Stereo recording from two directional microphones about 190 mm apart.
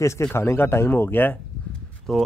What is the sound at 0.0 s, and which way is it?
Speech, 15° left (ahead or behind).